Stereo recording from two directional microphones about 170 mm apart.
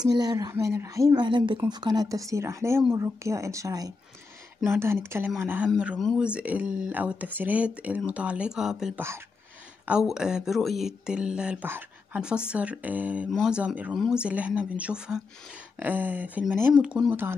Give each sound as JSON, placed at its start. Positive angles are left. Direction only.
{"t": 0.0, "sound": "speech", "side_deg": -25}
{"t": 5.7, "sound": "speech", "side_deg": 0}